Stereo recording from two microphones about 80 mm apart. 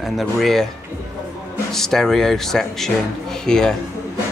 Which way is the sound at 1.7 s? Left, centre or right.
Centre.